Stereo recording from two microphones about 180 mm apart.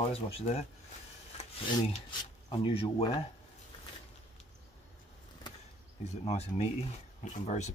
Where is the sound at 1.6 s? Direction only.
30° left (ahead or behind).